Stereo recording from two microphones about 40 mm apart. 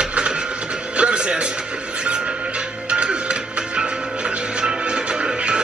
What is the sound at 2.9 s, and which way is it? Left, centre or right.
Music, right.